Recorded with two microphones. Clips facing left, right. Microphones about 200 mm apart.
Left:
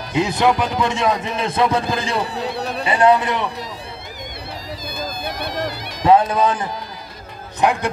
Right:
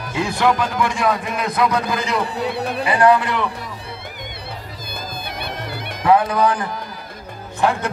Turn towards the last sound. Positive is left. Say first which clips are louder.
# left 1 dB
turn(degrees=15)  # may be behind; listen again after turning